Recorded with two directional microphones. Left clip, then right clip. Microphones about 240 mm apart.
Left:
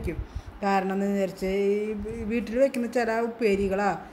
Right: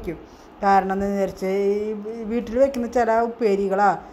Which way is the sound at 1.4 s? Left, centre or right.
Right.